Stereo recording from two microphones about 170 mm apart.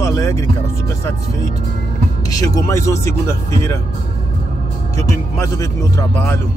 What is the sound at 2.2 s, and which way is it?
Speech, 20° left (ahead or behind).